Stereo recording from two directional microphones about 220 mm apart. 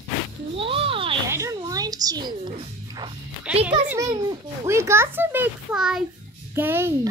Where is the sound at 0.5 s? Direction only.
25° right (ahead or behind).